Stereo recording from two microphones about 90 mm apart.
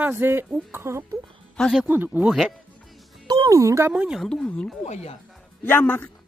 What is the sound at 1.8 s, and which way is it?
Speech, 20° right (ahead or behind).